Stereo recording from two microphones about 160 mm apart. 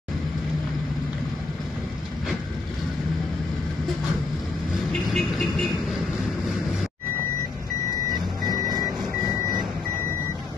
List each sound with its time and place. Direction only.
5.0 s vehicle: centre (ahead or behind)